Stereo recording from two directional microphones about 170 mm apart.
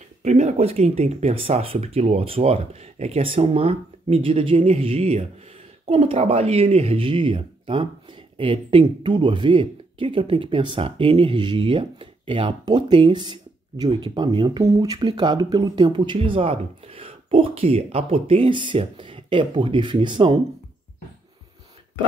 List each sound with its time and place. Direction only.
0.2 s speech: 40° right (ahead or behind)